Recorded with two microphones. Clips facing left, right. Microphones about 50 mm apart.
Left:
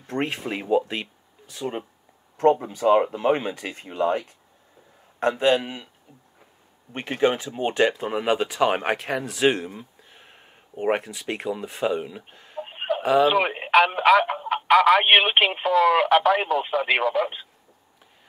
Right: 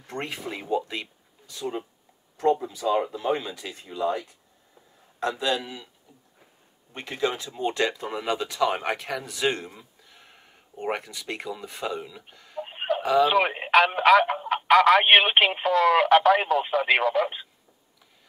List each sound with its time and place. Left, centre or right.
0.0 s speech: centre
1.5 s speech: left
6.9 s speech: left
9.8 s a sound: left
11.1 s speech: left
12.5 s a sound: centre
13.1 s speech: centre